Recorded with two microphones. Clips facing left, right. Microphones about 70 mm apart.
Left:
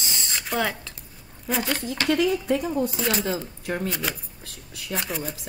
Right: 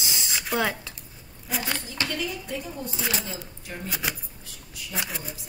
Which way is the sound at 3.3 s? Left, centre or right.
Left.